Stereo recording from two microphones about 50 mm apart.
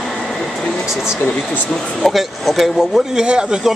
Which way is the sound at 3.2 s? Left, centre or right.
Centre.